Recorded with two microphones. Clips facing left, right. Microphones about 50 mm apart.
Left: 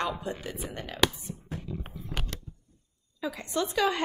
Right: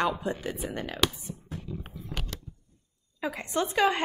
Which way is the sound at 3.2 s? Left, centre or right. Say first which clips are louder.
Right 1 dB; right.